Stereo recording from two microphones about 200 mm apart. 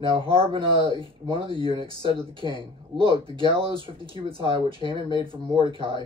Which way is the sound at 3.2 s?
25° right (ahead or behind).